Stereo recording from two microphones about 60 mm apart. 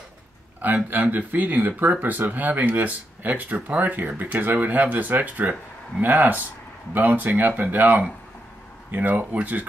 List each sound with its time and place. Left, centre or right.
0.6 s speech: right